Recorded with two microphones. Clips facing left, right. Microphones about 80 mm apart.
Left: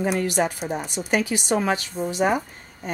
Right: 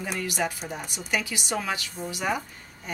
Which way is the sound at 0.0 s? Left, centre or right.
Left.